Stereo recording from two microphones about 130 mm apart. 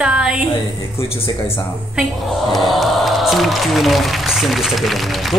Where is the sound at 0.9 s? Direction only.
50° left (ahead or behind).